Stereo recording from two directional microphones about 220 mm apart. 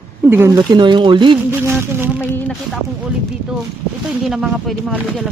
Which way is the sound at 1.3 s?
10° right (ahead or behind).